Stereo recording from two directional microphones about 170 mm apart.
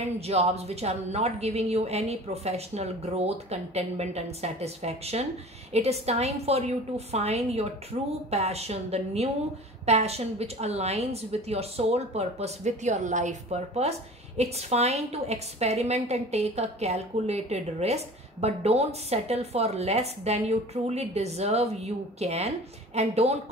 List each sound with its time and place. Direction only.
0.0 s a woman's voice: 40° right (ahead or behind)